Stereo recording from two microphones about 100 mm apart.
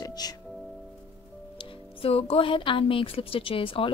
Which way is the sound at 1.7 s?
70° left (ahead or behind).